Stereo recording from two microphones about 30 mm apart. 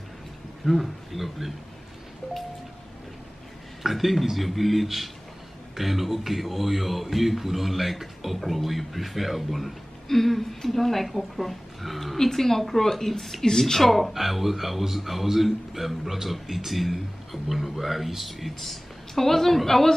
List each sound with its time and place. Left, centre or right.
0.7 s a man's voice: centre
3.8 s a man's voice: centre
12.2 s a woman's voice: centre
13.7 s a man's voice: centre